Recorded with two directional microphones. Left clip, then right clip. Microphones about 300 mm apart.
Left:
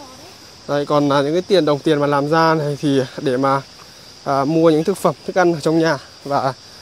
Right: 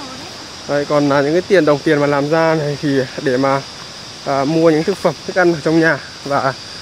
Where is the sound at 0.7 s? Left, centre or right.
Left.